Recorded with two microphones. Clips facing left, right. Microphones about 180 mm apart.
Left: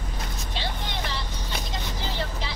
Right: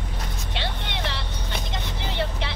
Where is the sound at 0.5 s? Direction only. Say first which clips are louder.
Right 1 dB; 65° right (ahead or behind).